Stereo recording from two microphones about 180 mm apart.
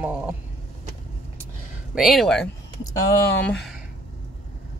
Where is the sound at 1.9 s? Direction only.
Centre (ahead or behind).